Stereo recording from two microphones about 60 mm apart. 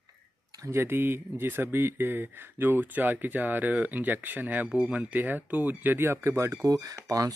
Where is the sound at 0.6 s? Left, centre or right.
Right.